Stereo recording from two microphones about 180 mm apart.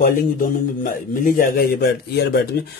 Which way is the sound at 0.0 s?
50° left (ahead or behind).